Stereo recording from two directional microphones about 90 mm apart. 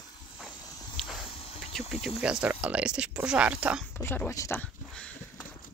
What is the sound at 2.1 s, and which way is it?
Speech, 15° right (ahead or behind).